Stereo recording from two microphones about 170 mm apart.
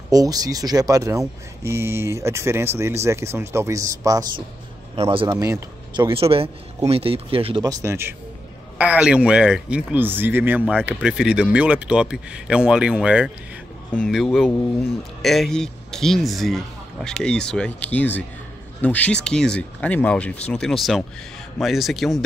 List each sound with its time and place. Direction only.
0.1 s speech: 20° right (ahead or behind)
4.9 s speech: 35° right (ahead or behind)
5.3 s speech: 20° right (ahead or behind)
7.6 s a man's voice: 20° right (ahead or behind); by 22.2 s centre (ahead or behind)